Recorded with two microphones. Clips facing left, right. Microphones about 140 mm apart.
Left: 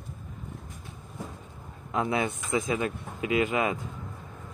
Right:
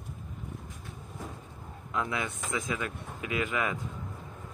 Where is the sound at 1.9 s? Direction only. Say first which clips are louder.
Left 5 dB; 25° left (ahead or behind).